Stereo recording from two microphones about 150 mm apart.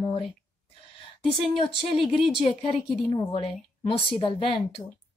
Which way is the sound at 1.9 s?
40° left (ahead or behind).